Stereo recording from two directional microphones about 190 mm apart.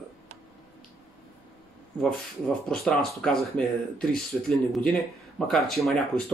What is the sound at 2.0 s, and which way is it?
Speech, 5° left (ahead or behind).